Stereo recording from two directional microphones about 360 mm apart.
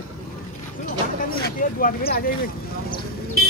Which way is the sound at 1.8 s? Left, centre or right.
Left.